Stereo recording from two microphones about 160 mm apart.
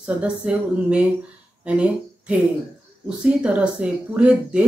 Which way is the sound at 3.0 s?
5° right (ahead or behind).